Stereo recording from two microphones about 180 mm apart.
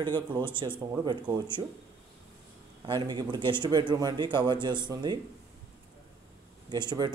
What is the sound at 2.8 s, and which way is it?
Speech, 25° right (ahead or behind).